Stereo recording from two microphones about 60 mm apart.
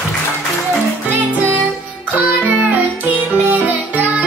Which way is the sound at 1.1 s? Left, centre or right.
Right.